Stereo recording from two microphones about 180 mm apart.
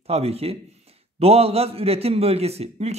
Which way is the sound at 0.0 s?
35° right (ahead or behind).